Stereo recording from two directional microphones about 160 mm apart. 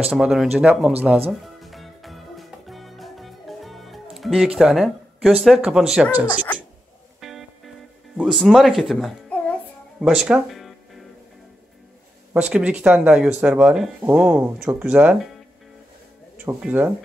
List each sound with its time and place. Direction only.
0.0 s speech: 5° right (ahead or behind)
1.6 s music: centre (ahead or behind)
6.1 s speech: 10° right (ahead or behind)
7.2 s music: centre (ahead or behind)
8.2 s a child's voice: centre (ahead or behind)
9.9 s music: centre (ahead or behind)
12.4 s speech: 10° right (ahead or behind)
16.3 s speech: 10° right (ahead or behind)